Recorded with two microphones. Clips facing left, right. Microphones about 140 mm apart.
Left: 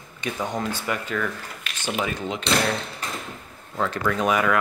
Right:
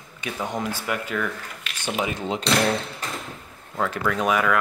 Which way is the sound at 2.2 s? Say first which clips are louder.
Right 2 dB; 30° right (ahead or behind).